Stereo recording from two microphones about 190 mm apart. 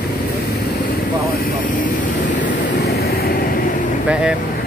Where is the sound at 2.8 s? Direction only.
55° left (ahead or behind).